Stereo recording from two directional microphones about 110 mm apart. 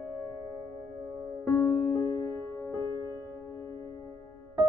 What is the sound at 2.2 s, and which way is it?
Music, 30° left (ahead or behind).